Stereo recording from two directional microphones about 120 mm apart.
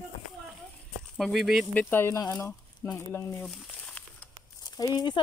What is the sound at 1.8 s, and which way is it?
Speech, 20° left (ahead or behind).